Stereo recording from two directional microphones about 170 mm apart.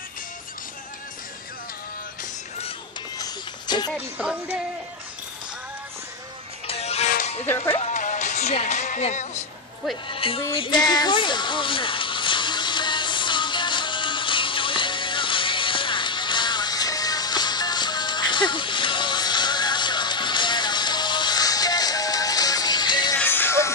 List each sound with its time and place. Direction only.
3.2 s music: 25° left (ahead or behind)
3.9 s speech: 5° right (ahead or behind)
6.7 s music: 40° left (ahead or behind)
10.0 s speech: 30° left (ahead or behind)
10.4 s a sound: 30° left (ahead or behind)
23.1 s music: 10° left (ahead or behind)